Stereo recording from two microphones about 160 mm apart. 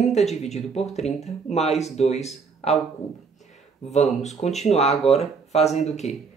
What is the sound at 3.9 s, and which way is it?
Speech, 45° left (ahead or behind).